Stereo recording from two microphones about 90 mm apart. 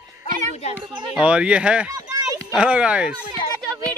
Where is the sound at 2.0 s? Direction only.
40° right (ahead or behind).